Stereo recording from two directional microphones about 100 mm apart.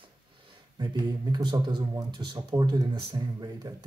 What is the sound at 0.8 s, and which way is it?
Speech, 45° right (ahead or behind).